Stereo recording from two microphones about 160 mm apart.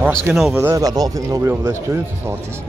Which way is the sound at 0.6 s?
20° right (ahead or behind).